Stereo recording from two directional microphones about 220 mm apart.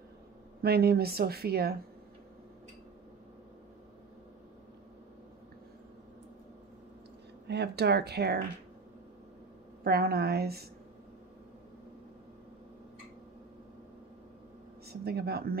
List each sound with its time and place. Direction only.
0.6 s speech: 45° right (ahead or behind)
7.4 s speech: 50° right (ahead or behind)
9.8 s speech: 45° right (ahead or behind)
14.9 s speech: 45° right (ahead or behind)